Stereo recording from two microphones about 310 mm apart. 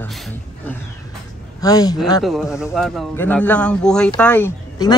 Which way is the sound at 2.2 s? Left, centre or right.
Centre.